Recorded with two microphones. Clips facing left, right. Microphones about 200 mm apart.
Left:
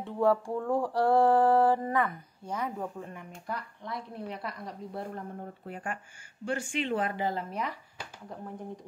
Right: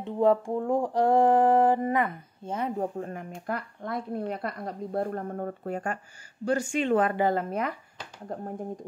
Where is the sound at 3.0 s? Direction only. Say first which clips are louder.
Right 7 dB; 50° right (ahead or behind).